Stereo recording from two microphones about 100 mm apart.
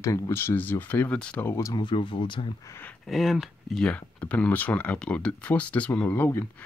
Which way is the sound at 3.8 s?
15° left (ahead or behind).